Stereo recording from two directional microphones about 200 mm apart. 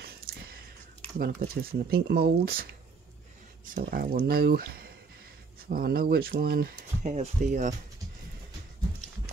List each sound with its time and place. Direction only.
0.0 s a sound: 50° right (ahead or behind)
1.1 s speech: 50° right (ahead or behind)
7.0 s speech: 35° right (ahead or behind)